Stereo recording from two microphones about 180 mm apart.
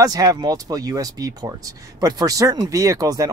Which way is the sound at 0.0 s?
20° right (ahead or behind).